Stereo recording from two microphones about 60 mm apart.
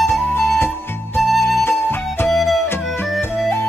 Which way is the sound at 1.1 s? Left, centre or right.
Centre.